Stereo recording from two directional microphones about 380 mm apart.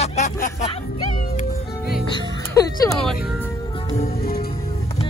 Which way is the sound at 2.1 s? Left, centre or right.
Centre.